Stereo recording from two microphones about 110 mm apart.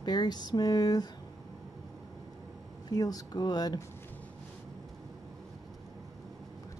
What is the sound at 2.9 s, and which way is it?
Speech, 35° left (ahead or behind).